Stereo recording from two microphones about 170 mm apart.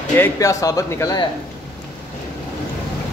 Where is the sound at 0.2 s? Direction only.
20° left (ahead or behind).